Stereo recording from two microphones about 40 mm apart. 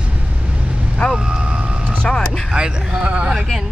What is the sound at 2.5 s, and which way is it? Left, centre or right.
Speech, right.